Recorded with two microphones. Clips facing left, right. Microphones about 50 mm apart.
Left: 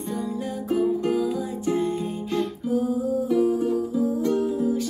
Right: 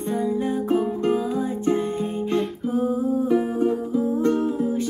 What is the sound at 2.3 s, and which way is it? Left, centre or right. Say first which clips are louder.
Music: even; right.